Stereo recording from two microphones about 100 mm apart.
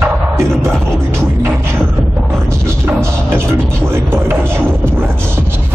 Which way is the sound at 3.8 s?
25° right (ahead or behind).